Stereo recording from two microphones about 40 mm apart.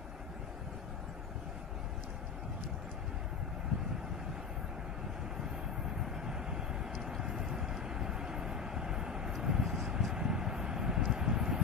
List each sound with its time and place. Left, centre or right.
6.0 s vehicle: centre
6.9 s vehicle: centre